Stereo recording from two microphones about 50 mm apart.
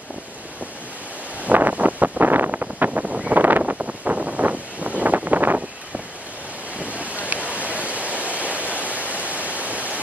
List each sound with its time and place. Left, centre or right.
1.4 s wind noise: right
2.9 s a sound: right
3.3 s wind: right
6.8 s wind: right
7.4 s waterfall: right